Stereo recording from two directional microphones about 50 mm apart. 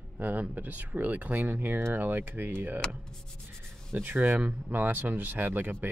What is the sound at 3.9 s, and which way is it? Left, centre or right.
Speech, right.